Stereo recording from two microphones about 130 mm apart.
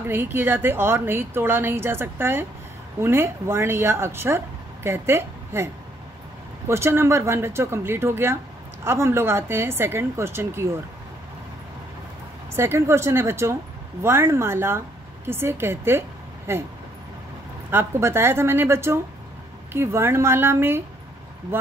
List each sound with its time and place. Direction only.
0.1 s a woman's voice: 15° right (ahead or behind)
6.7 s a woman's voice: 20° right (ahead or behind)
12.5 s a woman's voice: 20° right (ahead or behind)
17.6 s a woman's voice: 20° right (ahead or behind)